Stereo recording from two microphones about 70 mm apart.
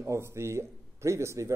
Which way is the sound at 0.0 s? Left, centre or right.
Right.